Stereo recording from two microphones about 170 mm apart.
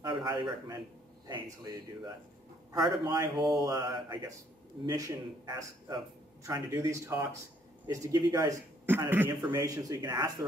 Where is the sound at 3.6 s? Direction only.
20° right (ahead or behind).